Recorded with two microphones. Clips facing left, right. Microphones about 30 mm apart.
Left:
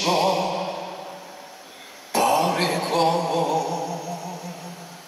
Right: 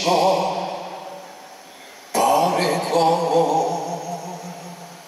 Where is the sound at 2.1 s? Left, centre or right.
Centre.